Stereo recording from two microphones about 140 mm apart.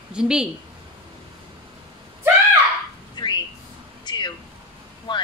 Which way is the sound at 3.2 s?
35° left (ahead or behind).